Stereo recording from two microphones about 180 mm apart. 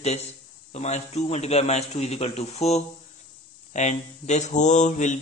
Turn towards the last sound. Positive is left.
turn(degrees=40)  # may be behind; listen again after turning